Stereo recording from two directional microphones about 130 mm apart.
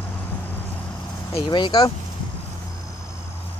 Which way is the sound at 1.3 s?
35° left (ahead or behind).